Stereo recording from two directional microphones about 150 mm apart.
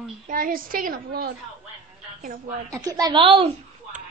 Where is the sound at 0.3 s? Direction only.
70° right (ahead or behind).